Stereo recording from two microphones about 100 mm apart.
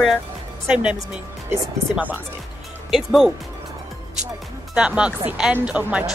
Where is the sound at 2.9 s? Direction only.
Centre (ahead or behind).